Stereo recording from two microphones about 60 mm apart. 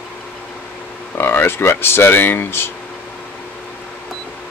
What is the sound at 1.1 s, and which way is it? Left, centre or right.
Speech, left.